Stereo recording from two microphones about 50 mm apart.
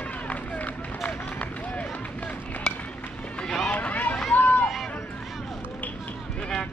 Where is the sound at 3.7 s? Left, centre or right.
Left.